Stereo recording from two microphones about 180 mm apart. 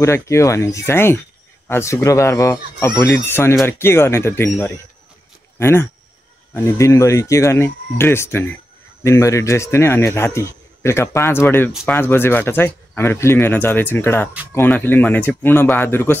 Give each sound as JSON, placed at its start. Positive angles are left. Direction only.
{"t": 0.0, "sound": "a man's voice", "side_deg": 15}